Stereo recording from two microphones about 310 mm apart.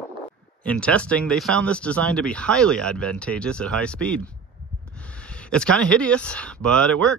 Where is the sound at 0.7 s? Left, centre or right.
Centre.